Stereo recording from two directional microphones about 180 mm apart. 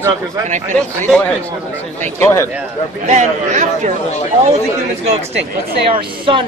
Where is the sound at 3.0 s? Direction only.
40° right (ahead or behind).